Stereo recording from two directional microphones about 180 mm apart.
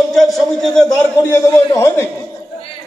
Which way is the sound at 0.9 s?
15° left (ahead or behind).